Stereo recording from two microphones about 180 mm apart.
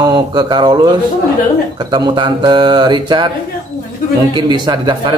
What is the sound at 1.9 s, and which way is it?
Mantra, 25° right (ahead or behind).